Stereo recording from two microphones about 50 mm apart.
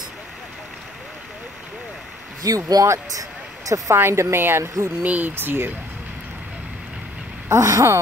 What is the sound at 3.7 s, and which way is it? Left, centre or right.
Speech, right.